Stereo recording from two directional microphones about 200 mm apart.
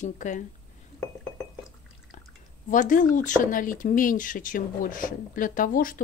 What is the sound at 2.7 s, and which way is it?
A woman's voice, 40° left (ahead or behind).